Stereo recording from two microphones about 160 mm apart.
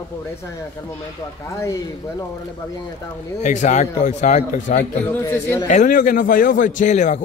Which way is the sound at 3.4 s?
50° left (ahead or behind).